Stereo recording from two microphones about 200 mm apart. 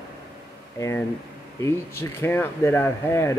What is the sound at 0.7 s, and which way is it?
Speech, 15° left (ahead or behind).